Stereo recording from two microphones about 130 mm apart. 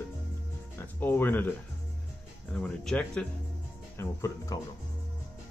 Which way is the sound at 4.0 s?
25° left (ahead or behind).